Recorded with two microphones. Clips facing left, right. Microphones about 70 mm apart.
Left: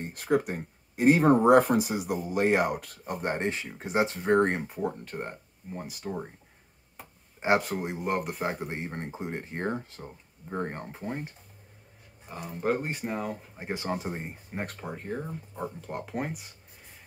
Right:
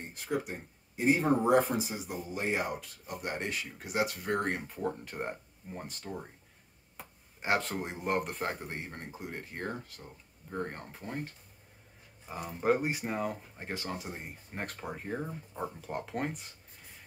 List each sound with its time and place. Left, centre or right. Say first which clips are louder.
0.1 s speech: left 8 dB; left
3.2 s speech: left 6 dB; left
4.6 s speech: left 3 dB; centre
5.0 s speech: left 1 dB; centre
7.3 s speech: left 6 dB; left
7.6 s speech: left 4 dB; centre; by 11.3 s left
12.3 s speech: even; centre
13.6 s speech: left 5 dB; centre
13.8 s speech: left 7 dB; left
14.5 s speech: left 2 dB; centre